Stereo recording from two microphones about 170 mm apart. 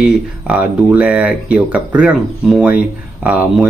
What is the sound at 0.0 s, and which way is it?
Speech, 5° right (ahead or behind).